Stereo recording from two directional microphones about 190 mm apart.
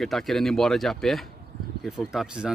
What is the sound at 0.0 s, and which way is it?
Speech, centre (ahead or behind).